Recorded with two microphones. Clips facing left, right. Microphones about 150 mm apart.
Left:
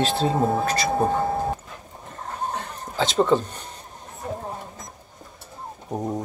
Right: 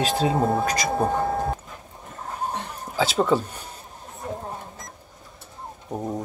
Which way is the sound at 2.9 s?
5° right (ahead or behind).